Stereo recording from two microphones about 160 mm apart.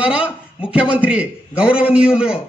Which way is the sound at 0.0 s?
5° right (ahead or behind).